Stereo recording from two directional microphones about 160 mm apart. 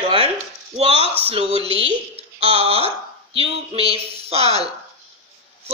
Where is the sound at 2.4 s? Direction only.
40° right (ahead or behind).